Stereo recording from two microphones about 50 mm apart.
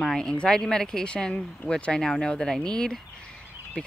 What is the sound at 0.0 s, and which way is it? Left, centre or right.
Speech, centre.